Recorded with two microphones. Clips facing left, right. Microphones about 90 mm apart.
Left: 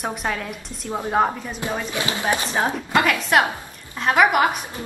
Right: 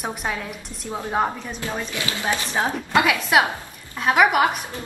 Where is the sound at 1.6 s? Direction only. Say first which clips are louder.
Left 3 dB; 15° left (ahead or behind).